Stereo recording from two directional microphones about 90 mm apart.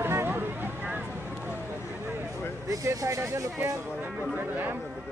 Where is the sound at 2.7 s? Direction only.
35° right (ahead or behind).